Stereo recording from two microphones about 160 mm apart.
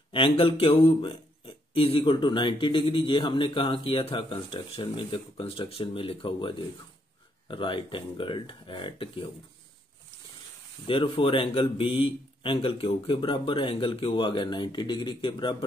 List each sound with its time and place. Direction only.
0.1 s speech: 35° left (ahead or behind)
10.9 s speech: 35° left (ahead or behind)